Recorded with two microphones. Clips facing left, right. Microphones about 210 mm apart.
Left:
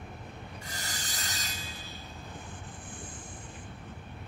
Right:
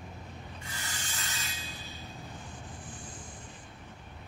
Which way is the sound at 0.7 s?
40° left (ahead or behind).